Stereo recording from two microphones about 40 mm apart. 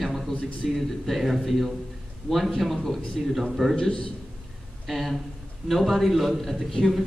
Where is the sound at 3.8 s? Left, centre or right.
Left.